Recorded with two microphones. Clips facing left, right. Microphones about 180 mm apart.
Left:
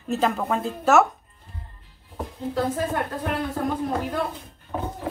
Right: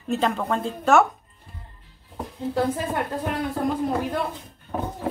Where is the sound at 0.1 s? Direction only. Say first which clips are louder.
Even; centre (ahead or behind).